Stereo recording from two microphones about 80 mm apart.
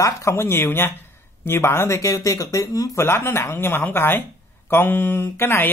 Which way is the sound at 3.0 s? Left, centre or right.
Left.